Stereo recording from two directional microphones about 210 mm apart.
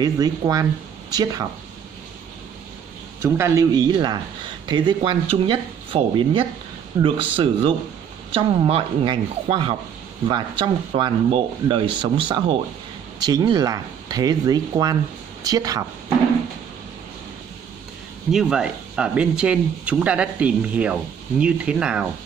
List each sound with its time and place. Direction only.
0.0 s speech: 20° right (ahead or behind)
3.2 s speech: 10° right (ahead or behind)
18.3 s speech: 5° right (ahead or behind)